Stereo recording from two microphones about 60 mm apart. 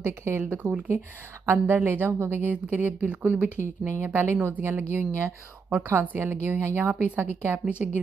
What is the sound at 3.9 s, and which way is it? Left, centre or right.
A woman's voice, right.